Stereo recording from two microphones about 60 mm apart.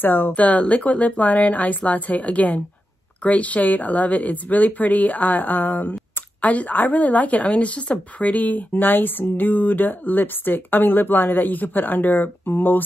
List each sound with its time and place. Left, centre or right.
0.0 s speech: left
0.3 s speech: left